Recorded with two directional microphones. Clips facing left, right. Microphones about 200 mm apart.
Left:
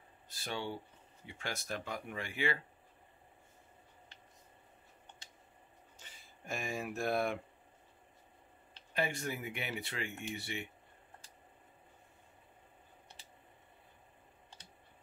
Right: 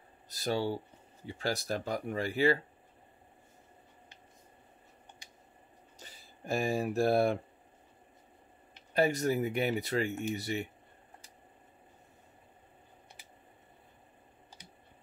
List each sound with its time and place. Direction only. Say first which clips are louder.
0.3 s speech: right 8 dB; 40° right (ahead or behind)
5.9 s speech: right 7 dB; 35° right (ahead or behind)
8.9 s speech: right 9 dB; 40° right (ahead or behind)